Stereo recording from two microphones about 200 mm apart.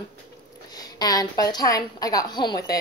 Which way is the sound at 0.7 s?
20° left (ahead or behind).